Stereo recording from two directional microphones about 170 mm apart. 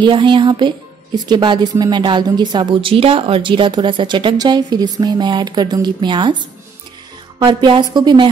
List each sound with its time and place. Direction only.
0.0 s a woman's voice: 30° right (ahead or behind)